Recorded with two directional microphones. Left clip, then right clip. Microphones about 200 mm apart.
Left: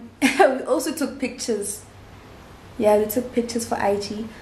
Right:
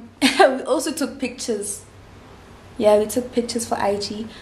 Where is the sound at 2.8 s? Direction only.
5° right (ahead or behind).